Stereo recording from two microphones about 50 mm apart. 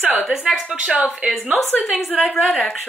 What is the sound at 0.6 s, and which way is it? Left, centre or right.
Speech, right.